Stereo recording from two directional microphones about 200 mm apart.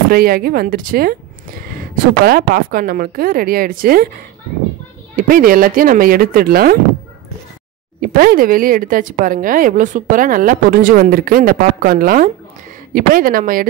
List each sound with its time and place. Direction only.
0.1 s a woman's voice: 50° right (ahead or behind)
5.1 s a woman's voice: 45° right (ahead or behind)
8.2 s a woman's voice: 45° right (ahead or behind)